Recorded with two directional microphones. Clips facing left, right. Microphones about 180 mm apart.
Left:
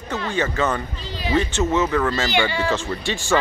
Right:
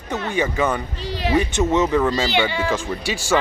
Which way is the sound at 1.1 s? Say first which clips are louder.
Right 3 dB; 70° right (ahead or behind).